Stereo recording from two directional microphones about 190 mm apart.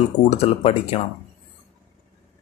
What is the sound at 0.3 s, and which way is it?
Speech, 35° left (ahead or behind).